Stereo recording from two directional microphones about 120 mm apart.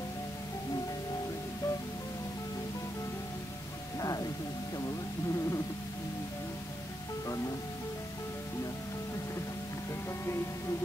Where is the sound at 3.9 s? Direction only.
30° left (ahead or behind).